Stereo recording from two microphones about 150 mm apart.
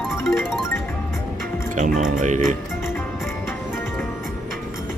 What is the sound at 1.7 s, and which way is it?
Speech, 60° right (ahead or behind).